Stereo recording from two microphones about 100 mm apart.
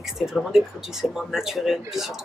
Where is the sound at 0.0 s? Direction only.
5° right (ahead or behind).